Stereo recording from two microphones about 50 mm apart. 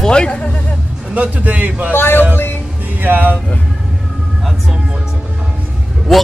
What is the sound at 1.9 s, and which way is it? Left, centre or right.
Speech, left.